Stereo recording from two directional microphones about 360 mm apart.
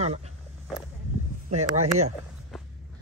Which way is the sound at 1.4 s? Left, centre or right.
Centre.